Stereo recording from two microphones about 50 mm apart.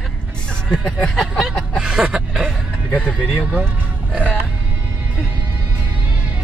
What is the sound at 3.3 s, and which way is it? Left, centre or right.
Music, right.